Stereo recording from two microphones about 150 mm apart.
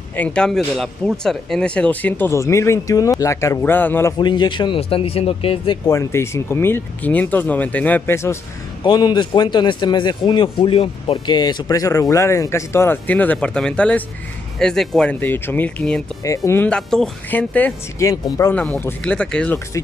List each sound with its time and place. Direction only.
0.1 s speech: 10° left (ahead or behind)
4.2 s speech: 30° left (ahead or behind)
5.9 s speech: 20° left (ahead or behind)
8.8 s a man's voice: 25° left (ahead or behind); by 18.0 s 10° left (ahead or behind)
18.0 s a man's voice: 25° left (ahead or behind)
18.5 s speech: 10° left (ahead or behind)